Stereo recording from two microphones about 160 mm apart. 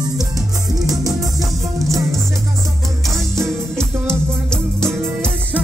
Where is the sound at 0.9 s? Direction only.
20° right (ahead or behind).